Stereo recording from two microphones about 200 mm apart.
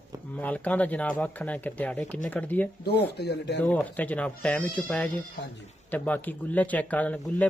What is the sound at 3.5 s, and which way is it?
A man's voice, 10° left (ahead or behind).